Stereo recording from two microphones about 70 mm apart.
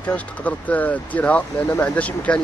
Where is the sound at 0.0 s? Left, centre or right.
Left.